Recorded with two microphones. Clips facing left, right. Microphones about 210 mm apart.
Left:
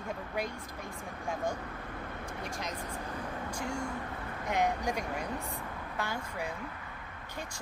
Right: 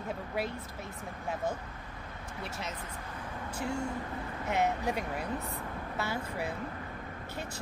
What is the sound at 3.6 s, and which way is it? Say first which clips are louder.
Speech: right 4 dB; 5° right (ahead or behind).